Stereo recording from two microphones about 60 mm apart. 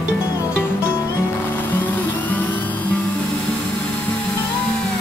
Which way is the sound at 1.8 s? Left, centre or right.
Left.